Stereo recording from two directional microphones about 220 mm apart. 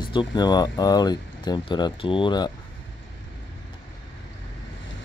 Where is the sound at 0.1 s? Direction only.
20° left (ahead or behind).